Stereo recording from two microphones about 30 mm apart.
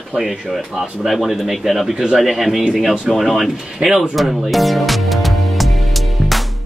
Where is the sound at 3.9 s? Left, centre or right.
Centre.